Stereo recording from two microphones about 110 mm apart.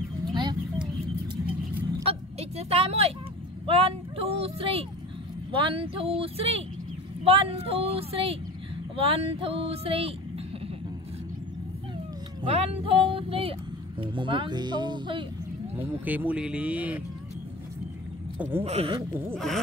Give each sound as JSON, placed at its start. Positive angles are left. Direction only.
{"t": 0.3, "sound": "a sound", "side_deg": -40}
{"t": 2.0, "sound": "vehicle", "side_deg": -70}
{"t": 3.6, "sound": "speech", "side_deg": -60}
{"t": 12.4, "sound": "speech", "side_deg": -60}
{"t": 16.1, "sound": "speech", "side_deg": -15}
{"t": 18.6, "sound": "speech", "side_deg": -60}
{"t": 19.3, "sound": "speech", "side_deg": 0}